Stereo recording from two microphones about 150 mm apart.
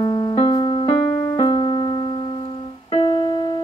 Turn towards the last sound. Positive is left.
turn(degrees=35)  # may be behind; listen again after turning